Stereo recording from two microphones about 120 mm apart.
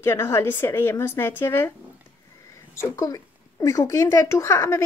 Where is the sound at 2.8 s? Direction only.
25° left (ahead or behind).